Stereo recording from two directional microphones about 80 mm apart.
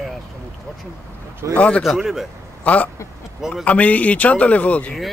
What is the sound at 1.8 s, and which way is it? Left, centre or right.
Speech, centre.